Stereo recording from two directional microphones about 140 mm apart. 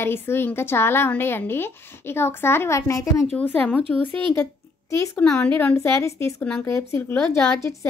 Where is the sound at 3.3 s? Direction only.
10° left (ahead or behind).